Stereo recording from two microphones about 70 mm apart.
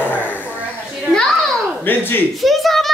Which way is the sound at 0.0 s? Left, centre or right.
Left.